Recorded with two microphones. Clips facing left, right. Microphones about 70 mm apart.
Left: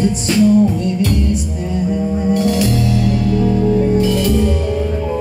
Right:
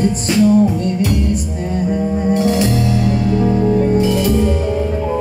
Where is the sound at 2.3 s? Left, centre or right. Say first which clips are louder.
Even; right.